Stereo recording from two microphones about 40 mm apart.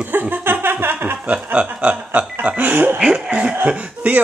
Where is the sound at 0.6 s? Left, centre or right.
Right.